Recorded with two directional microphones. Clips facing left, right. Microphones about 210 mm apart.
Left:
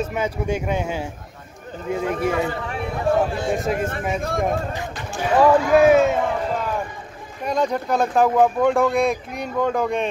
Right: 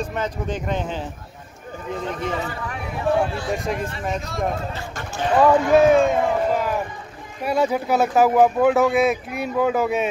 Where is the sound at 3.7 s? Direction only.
50° left (ahead or behind).